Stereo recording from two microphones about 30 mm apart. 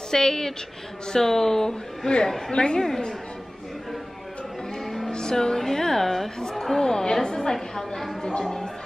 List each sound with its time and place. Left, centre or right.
0.1 s speech: centre
2.5 s a woman's voice: left
4.8 s music: centre
5.1 s speech: left
6.5 s chatter: centre
6.8 s a woman's voice: left